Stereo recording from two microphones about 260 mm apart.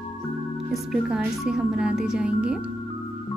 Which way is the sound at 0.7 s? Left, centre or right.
Centre.